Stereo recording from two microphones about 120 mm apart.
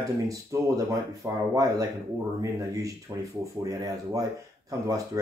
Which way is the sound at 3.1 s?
35° right (ahead or behind).